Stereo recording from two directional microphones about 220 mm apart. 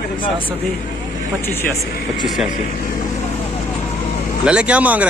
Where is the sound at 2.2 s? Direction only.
Centre (ahead or behind).